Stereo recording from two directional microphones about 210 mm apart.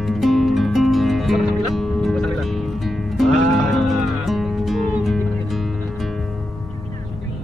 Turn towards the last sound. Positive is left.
turn(degrees=0)  # may be behind; listen again after turning